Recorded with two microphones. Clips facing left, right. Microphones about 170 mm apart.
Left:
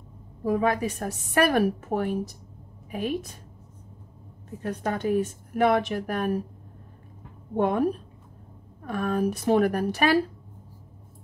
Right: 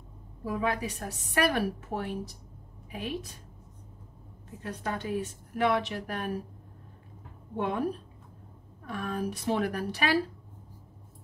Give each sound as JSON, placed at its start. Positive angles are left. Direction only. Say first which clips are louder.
{"t": 0.4, "sound": "a woman's voice", "louder": "left 6 dB", "side_deg": 50}
{"t": 4.6, "sound": "a woman's voice", "louder": "left 7 dB", "side_deg": 55}
{"t": 7.5, "sound": "a woman's voice", "louder": "left 7 dB", "side_deg": 50}
{"t": 8.8, "sound": "a woman's voice", "louder": "left 7 dB", "side_deg": 50}